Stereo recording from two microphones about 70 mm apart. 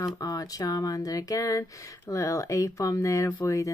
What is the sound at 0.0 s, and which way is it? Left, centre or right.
Speech, left.